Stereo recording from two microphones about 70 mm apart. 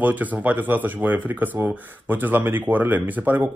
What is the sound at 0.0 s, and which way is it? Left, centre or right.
Speech, right.